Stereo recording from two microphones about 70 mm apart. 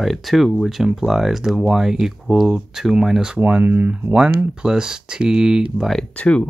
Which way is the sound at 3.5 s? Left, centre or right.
Right.